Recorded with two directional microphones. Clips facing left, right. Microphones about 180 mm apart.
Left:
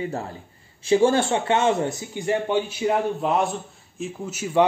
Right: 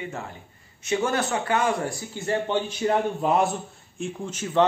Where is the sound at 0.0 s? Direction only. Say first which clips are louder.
Left 5 dB; 35° left (ahead or behind).